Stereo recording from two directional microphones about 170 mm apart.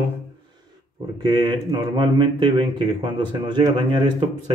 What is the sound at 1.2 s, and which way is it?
Speech, 25° right (ahead or behind).